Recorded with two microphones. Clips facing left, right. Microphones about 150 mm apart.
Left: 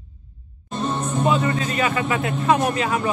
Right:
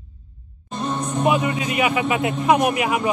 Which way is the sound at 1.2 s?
15° right (ahead or behind).